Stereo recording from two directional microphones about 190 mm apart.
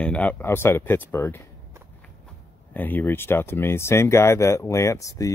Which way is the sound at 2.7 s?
10° left (ahead or behind).